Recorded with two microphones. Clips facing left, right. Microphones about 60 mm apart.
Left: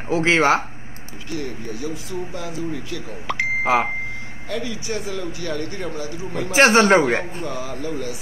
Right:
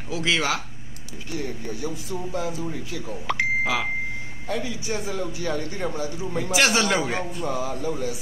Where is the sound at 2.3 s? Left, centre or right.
Right.